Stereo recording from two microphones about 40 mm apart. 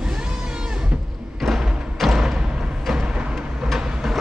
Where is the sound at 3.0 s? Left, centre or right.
Right.